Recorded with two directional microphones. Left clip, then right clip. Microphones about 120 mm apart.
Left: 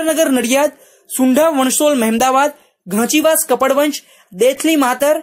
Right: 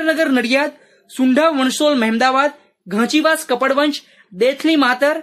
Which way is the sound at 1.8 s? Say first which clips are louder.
Even; 20° left (ahead or behind).